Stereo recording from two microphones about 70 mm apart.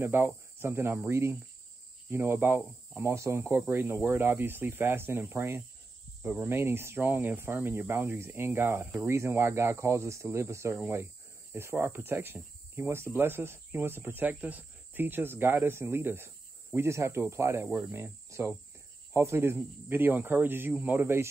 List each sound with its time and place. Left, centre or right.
0.0 s speech: right